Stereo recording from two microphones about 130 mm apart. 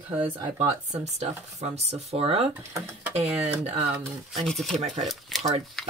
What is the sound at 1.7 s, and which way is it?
Speech, 55° right (ahead or behind).